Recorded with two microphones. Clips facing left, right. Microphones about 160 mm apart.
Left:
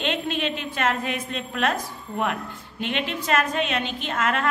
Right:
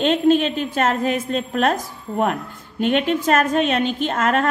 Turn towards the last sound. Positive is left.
turn(degrees=-40)  # may be behind; listen again after turning